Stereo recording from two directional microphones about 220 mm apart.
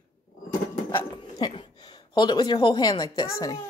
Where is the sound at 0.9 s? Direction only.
20° left (ahead or behind).